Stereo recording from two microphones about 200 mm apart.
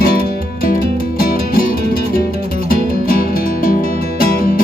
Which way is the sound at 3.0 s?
45° left (ahead or behind).